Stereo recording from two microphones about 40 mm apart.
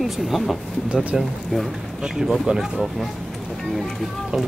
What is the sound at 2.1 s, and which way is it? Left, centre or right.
Speech, centre.